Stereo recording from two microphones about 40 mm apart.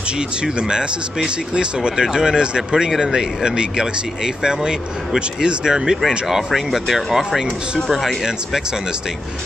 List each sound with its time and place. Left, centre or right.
0.4 s speech: right
5.9 s speech: centre